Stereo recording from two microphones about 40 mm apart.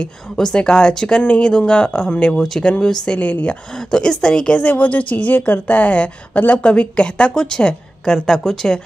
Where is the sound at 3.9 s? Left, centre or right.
Centre.